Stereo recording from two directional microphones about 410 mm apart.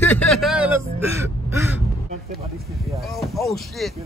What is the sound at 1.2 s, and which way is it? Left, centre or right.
Caw, centre.